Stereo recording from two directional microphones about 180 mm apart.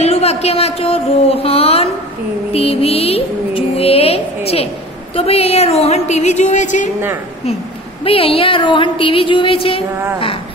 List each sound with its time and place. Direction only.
0.0 s a woman's voice: 35° left (ahead or behind)
8.0 s a woman's voice: 30° left (ahead or behind)